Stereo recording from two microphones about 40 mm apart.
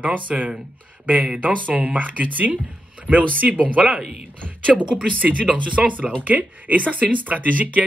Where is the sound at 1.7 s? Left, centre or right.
Right.